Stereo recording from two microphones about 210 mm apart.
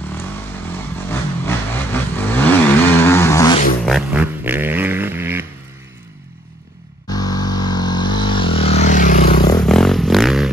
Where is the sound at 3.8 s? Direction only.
5° right (ahead or behind).